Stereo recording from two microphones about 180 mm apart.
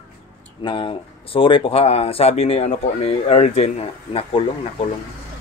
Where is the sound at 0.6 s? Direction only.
30° left (ahead or behind).